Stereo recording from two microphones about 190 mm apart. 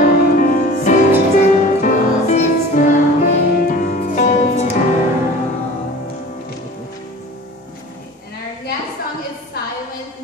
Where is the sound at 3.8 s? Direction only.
45° left (ahead or behind).